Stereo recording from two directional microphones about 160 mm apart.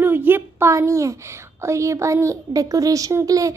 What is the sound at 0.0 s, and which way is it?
A woman's voice, 15° right (ahead or behind).